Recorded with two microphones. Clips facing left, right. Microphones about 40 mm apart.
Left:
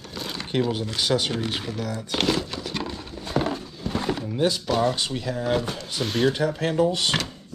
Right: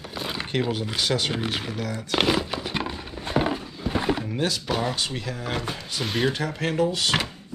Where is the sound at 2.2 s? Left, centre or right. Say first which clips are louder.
Right 2 dB; centre.